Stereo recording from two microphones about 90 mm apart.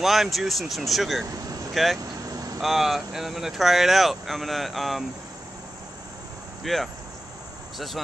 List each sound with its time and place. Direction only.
0.0 s speech: 5° right (ahead or behind)
1.2 s speech: 40° right (ahead or behind)
1.7 s speech: centre (ahead or behind)
2.1 s vehicle: 40° right (ahead or behind)
2.6 s speech: centre (ahead or behind)
6.6 s speech: centre (ahead or behind)